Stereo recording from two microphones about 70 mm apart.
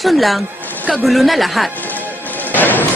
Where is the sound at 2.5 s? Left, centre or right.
Left.